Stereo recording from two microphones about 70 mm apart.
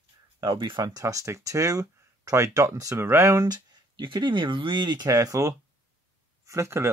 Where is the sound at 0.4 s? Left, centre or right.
Right.